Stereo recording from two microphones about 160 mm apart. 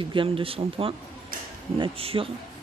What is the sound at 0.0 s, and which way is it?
Speech, 30° right (ahead or behind).